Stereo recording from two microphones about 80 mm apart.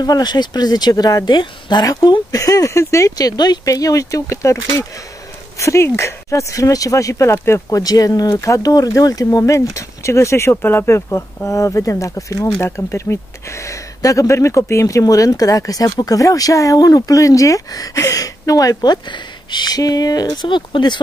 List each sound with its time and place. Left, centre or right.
0.0 s speech: left
1.9 s speech: left
7.8 s speech: left
8.4 s speech: left
12.5 s speech: left
20.4 s speech: left